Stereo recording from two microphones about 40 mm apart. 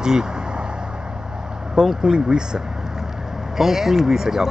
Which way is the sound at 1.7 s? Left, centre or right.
Centre.